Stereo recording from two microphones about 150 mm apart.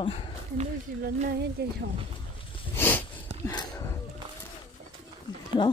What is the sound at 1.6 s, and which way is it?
Speech, 90° right.